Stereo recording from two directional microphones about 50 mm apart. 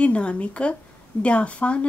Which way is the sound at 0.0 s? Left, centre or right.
Left.